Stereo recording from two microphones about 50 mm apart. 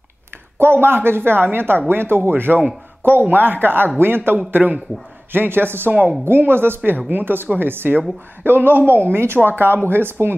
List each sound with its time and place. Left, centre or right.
0.6 s a man's voice: right
5.9 s a woman's voice: right
6.2 s a woman's voice: right